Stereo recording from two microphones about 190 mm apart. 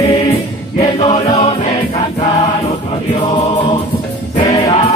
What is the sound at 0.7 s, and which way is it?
Music, 25° left (ahead or behind).